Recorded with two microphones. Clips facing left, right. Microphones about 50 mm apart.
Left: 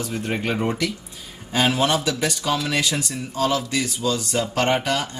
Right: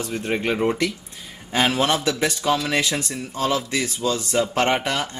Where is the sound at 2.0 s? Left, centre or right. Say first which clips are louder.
Right 1 dB; right.